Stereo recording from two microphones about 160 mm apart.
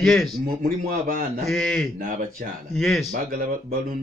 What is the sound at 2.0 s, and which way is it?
Speech, 60° right (ahead or behind).